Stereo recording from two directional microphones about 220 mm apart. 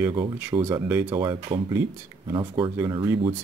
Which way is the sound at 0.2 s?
10° right (ahead or behind).